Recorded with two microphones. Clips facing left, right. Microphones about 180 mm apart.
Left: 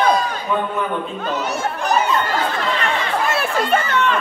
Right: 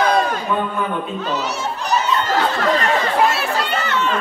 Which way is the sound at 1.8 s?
55° left (ahead or behind).